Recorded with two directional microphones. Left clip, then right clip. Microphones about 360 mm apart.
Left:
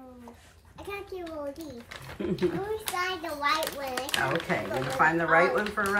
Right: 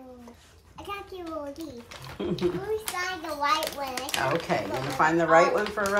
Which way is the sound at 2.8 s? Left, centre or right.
Centre.